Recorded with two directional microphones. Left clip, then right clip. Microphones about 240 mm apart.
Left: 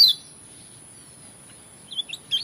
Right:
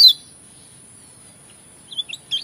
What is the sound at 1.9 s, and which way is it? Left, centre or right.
Chirp, centre.